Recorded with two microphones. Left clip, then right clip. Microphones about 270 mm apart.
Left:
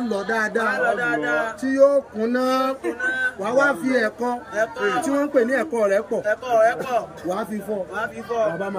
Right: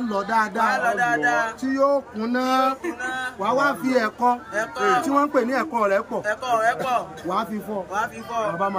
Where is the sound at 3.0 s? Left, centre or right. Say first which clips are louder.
Left 2 dB; centre.